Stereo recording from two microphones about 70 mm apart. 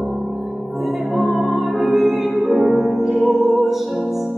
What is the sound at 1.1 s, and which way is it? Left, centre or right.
Music, centre.